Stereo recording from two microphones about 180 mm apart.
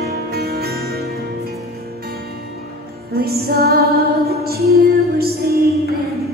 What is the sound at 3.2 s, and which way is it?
Music, 60° right (ahead or behind).